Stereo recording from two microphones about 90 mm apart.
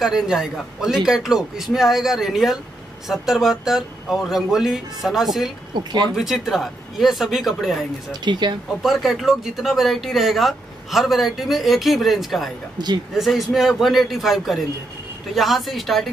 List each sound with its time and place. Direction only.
0.0 s speech: 5° right (ahead or behind)
8.1 s speech: 55° right (ahead or behind)
8.8 s speech: centre (ahead or behind)
12.8 s speech: 50° right (ahead or behind)
13.1 s speech: centre (ahead or behind)